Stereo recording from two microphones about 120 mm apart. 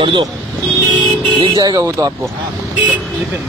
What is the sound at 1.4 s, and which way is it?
Speech, 35° right (ahead or behind).